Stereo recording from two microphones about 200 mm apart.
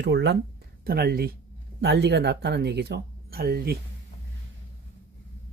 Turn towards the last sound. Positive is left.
turn(degrees=-50)  # may be behind; listen again after turning